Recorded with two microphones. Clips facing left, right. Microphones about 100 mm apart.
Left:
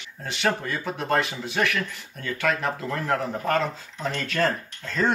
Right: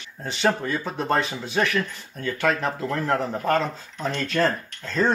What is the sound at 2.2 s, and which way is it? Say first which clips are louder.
Speech: right 2 dB; 25° right (ahead or behind).